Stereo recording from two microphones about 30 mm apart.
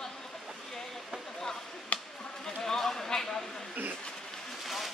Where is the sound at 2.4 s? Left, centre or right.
Centre.